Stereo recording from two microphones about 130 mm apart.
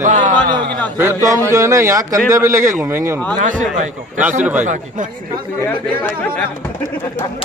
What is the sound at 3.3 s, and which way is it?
Speech, 90° right.